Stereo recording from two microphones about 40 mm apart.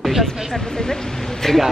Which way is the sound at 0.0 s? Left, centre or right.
Centre.